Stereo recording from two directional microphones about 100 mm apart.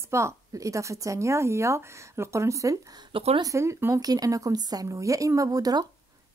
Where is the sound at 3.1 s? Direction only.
70° right (ahead or behind).